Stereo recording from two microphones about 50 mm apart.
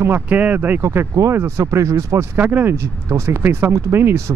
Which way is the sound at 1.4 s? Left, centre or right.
Right.